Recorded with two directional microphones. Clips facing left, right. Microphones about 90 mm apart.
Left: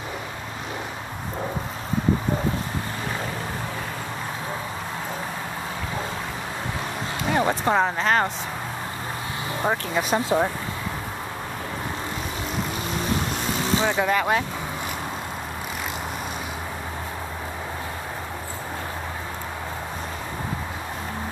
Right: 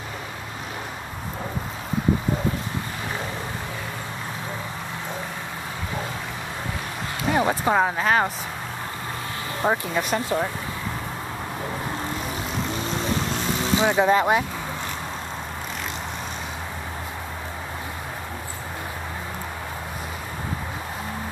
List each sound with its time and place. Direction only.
7.2 s speech: 5° right (ahead or behind)
9.6 s speech: 10° left (ahead or behind)
13.6 s speech: 20° right (ahead or behind)